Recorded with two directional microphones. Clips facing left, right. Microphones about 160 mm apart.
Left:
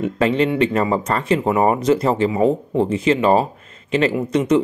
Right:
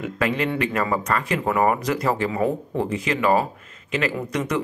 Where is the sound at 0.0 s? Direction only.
25° left (ahead or behind).